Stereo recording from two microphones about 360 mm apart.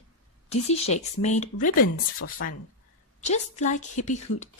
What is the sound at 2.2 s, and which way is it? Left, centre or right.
Speech, left.